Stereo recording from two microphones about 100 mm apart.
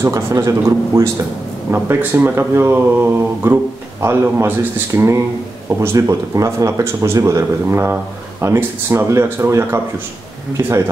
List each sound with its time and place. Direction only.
0.1 s speech: 35° right (ahead or behind)
1.7 s speech: 20° right (ahead or behind)